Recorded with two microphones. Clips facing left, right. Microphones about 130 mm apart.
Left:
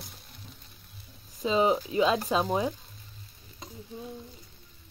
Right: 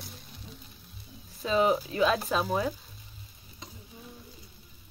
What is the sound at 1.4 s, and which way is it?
Speech, 20° left (ahead or behind).